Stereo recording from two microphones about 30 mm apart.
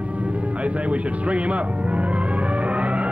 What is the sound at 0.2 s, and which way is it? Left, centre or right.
Music, right.